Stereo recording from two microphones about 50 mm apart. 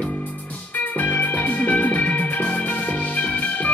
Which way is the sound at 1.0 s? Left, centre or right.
Left.